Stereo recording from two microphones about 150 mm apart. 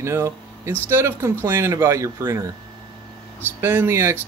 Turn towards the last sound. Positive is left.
turn(degrees=-20)  # may be behind; listen again after turning